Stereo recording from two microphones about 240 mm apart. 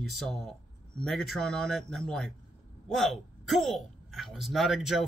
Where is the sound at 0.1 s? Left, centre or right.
Centre.